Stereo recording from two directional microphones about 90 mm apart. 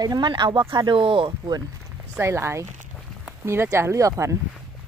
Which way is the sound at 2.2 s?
30° right (ahead or behind).